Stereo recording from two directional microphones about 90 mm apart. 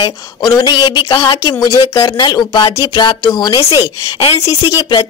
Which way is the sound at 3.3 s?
50° left (ahead or behind).